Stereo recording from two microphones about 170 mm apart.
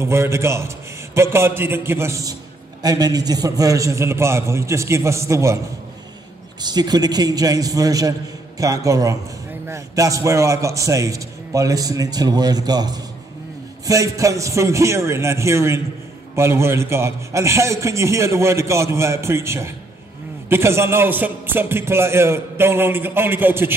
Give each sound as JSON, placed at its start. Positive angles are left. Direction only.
{"t": 0.0, "sound": "a man's voice", "side_deg": -15}
{"t": 6.6, "sound": "a man's voice", "side_deg": -25}